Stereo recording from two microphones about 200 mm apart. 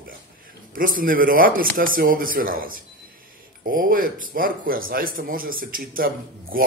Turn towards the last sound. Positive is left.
turn(degrees=-45)  # may be behind; listen again after turning